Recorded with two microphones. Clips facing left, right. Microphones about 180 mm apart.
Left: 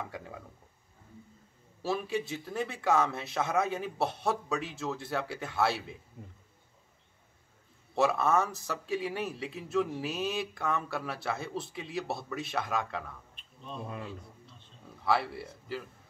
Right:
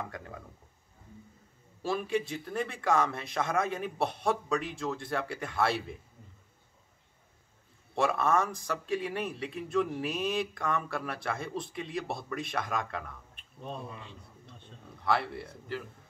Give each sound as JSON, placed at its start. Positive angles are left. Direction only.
{"t": 0.0, "sound": "speech", "side_deg": 5}
{"t": 1.8, "sound": "a man's voice", "side_deg": 5}
{"t": 7.9, "sound": "a man's voice", "side_deg": 5}
{"t": 13.4, "sound": "a sound", "side_deg": -55}
{"t": 15.0, "sound": "speech", "side_deg": 5}